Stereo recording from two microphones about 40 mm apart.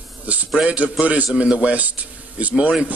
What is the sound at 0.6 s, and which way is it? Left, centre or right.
A man's voice, right.